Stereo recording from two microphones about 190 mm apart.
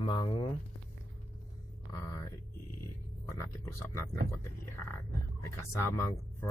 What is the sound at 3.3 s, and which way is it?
Speech, 15° left (ahead or behind).